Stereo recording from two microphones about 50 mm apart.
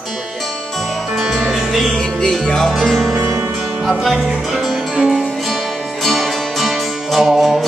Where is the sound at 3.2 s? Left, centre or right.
Right.